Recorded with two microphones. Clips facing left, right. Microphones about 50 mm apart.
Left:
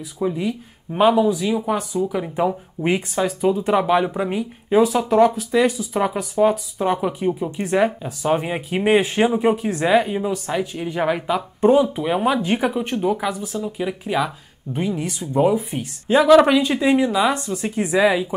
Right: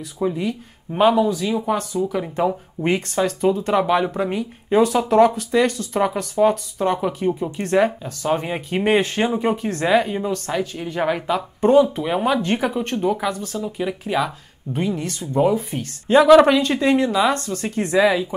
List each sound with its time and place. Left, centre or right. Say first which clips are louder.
0.2 s speech: even; centre